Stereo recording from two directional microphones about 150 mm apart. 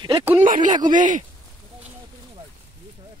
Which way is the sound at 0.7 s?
60° right (ahead or behind).